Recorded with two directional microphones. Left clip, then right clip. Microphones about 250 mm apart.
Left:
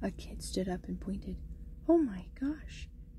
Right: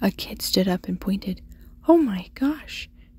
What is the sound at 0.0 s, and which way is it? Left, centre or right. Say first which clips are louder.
A woman's voice: right 14 dB; right.